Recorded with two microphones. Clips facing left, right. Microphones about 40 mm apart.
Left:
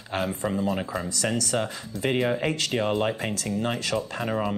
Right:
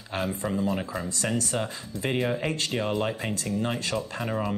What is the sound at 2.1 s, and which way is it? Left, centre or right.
Speech, centre.